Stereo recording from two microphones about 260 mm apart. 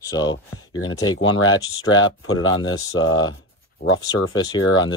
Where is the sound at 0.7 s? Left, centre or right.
Left.